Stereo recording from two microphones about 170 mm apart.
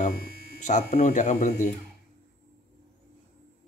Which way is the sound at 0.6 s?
45° left (ahead or behind).